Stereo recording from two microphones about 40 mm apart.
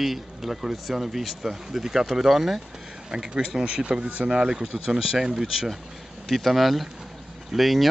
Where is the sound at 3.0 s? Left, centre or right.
Centre.